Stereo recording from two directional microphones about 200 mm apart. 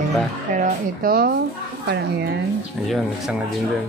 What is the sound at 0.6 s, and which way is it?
Speech, 50° right (ahead or behind).